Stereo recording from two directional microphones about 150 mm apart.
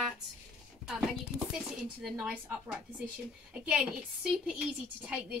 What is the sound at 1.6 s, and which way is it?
A woman's voice, 5° right (ahead or behind).